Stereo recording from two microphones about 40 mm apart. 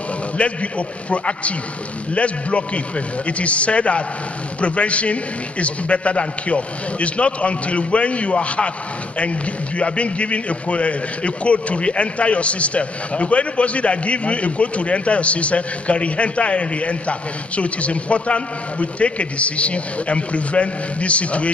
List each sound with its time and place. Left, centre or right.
0.4 s a man's voice: left